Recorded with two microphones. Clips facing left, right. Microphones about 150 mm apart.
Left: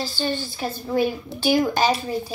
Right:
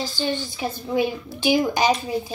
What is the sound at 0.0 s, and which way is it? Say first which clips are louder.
A woman's voice: even; 15° right (ahead or behind).